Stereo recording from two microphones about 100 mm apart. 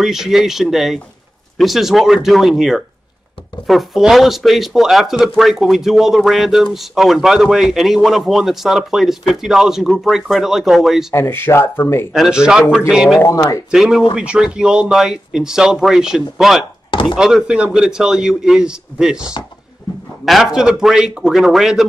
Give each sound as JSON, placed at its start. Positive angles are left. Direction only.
{"t": 0.0, "sound": "speech", "side_deg": -5}
{"t": 11.1, "sound": "speech", "side_deg": 25}
{"t": 12.1, "sound": "a man's voice", "side_deg": -5}
{"t": 13.2, "sound": "speech", "side_deg": 35}
{"t": 13.7, "sound": "a man's voice", "side_deg": 0}